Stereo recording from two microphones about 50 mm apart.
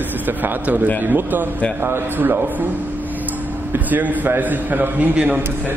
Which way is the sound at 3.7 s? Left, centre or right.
Right.